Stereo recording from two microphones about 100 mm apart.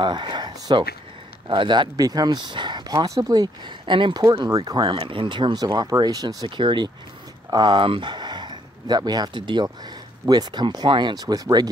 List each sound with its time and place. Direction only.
0.0 s speech: 50° right (ahead or behind)
4.8 s speech: 60° right (ahead or behind); by 11.7 s 40° right (ahead or behind)